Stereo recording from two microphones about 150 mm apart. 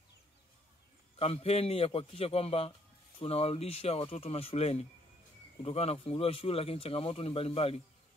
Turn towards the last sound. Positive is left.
turn(degrees=40)  # may be behind; listen again after turning